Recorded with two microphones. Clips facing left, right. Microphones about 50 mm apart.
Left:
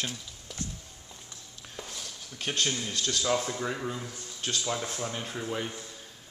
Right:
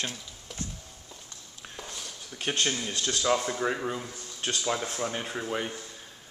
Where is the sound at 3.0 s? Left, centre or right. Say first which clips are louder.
Right 2 dB; right.